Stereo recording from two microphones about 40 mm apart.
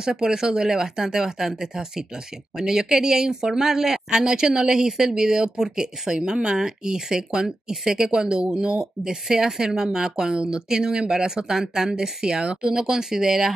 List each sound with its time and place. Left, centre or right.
0.0 s speech: centre